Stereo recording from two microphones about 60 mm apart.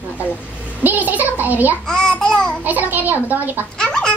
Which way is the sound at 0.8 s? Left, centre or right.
Right.